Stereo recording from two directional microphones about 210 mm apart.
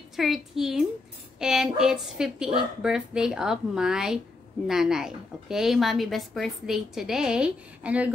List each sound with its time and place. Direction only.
0.1 s a woman's voice: centre (ahead or behind)